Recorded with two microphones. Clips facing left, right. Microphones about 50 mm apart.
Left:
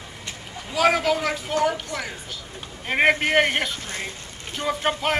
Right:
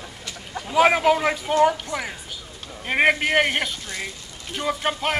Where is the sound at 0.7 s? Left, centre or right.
Right.